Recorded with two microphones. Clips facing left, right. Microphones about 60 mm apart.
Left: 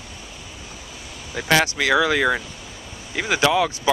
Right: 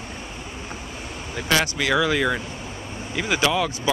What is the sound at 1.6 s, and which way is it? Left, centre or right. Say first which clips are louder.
Speech: left 3 dB; left.